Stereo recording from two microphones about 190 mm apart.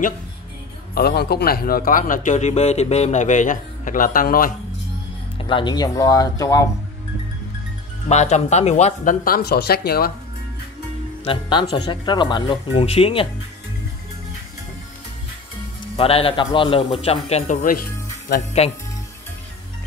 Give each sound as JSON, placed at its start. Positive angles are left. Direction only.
{"t": 0.9, "sound": "speech", "side_deg": 55}
{"t": 5.4, "sound": "speech", "side_deg": 25}
{"t": 8.1, "sound": "speech", "side_deg": 35}
{"t": 11.2, "sound": "speech", "side_deg": 25}
{"t": 16.0, "sound": "speech", "side_deg": 30}
{"t": 17.6, "sound": "speech", "side_deg": 50}
{"t": 18.6, "sound": "speech", "side_deg": 35}